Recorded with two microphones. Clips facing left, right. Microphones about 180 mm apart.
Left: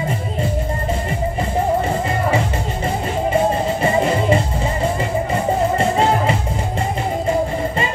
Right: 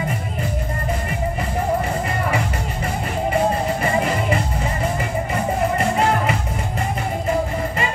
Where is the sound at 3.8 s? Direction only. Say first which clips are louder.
Left 4 dB; 25° left (ahead or behind).